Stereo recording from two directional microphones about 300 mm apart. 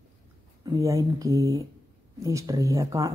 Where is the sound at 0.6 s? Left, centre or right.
Centre.